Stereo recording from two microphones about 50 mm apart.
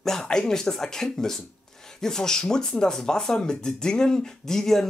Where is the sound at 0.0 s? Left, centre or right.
Centre.